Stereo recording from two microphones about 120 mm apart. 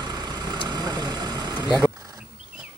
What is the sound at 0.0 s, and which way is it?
Vehicle, 35° right (ahead or behind).